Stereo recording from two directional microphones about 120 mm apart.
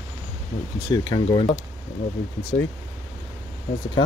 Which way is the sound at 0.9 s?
35° left (ahead or behind).